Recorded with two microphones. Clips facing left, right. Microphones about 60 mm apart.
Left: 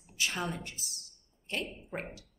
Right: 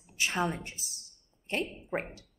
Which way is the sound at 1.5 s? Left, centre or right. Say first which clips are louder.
Right 4 dB; right.